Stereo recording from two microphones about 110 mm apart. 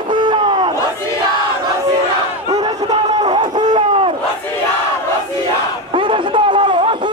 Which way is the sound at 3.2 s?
45° right (ahead or behind).